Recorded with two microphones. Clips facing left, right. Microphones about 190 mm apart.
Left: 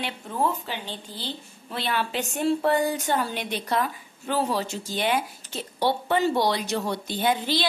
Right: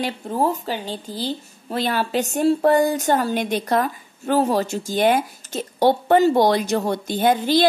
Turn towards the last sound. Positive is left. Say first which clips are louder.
# right 7 dB
turn(degrees=-45)  # may be behind; listen again after turning